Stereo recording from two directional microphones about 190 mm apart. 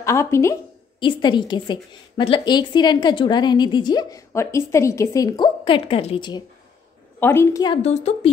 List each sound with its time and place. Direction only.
0.0 s a sound: 15° left (ahead or behind)
1.0 s a woman's voice: 25° left (ahead or behind)
7.2 s a woman's voice: 10° left (ahead or behind)
7.8 s a woman's voice: 35° left (ahead or behind)